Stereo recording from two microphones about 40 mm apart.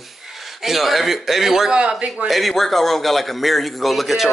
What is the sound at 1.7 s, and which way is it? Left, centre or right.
Speech, right.